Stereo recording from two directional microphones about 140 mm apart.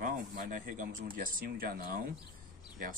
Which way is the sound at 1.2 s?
90° right.